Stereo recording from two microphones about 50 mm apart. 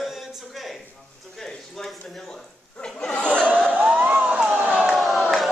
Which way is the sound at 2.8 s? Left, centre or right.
Centre.